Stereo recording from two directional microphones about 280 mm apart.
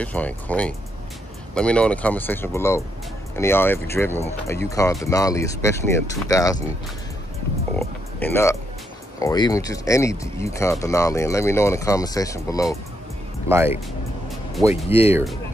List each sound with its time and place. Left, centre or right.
0.0 s speech: centre
7.8 s a sound: centre
9.2 s speech: centre
13.5 s speech: centre
14.9 s speech: left